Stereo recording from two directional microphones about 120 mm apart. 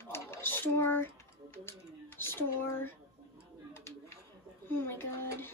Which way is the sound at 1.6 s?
20° left (ahead or behind).